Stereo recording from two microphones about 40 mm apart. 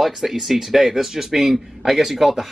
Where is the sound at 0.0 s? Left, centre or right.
Centre.